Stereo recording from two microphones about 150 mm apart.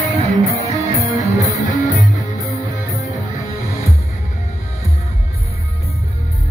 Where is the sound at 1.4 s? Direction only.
55° left (ahead or behind).